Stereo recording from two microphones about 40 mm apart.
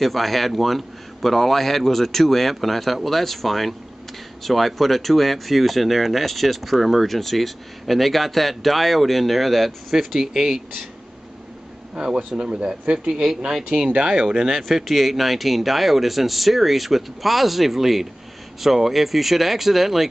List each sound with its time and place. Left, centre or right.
0.0 s speech: centre
11.9 s speech: centre
13.1 s speech: centre
13.8 s speech: right
14.5 s speech: centre